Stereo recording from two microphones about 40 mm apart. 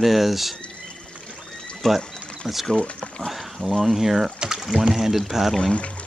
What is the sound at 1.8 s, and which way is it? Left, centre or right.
Speech, centre.